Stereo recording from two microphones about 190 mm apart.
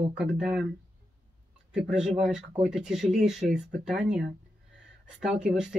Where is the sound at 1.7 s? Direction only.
5° right (ahead or behind).